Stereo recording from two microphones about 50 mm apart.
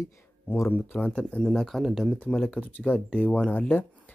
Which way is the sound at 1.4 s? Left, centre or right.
Centre.